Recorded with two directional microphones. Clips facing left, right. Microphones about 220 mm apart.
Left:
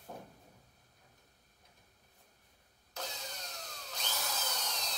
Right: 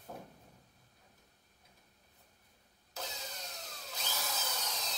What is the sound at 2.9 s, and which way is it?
Engine starting, 5° right (ahead or behind).